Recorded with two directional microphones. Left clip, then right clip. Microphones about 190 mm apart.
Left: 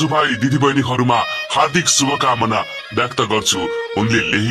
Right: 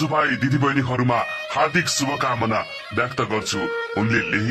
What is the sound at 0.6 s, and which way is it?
Speech, 20° left (ahead or behind).